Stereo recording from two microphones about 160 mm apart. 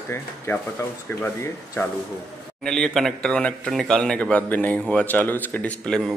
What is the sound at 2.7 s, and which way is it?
A man's voice, 5° left (ahead or behind).